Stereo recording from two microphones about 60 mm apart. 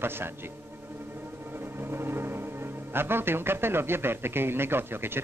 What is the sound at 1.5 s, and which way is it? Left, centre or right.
Speech, right.